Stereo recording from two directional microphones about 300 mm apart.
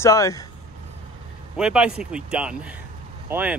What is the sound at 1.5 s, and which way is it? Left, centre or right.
Speech, centre.